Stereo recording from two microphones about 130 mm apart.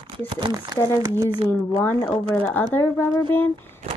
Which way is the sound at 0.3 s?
35° right (ahead or behind).